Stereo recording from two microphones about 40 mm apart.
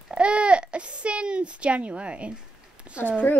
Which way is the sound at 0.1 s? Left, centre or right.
Right.